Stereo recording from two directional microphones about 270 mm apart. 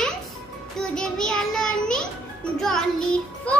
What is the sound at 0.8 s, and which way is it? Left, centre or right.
Child singing, centre.